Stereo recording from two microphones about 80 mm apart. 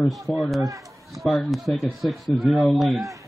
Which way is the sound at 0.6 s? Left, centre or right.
Right.